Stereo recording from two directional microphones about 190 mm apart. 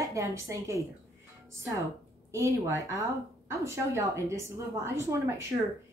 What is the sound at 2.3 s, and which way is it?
A woman's voice, 15° right (ahead or behind).